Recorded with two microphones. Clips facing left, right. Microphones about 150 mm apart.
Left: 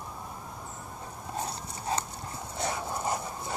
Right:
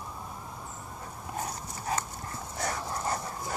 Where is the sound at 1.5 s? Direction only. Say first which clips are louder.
Left 1 dB; 25° left (ahead or behind).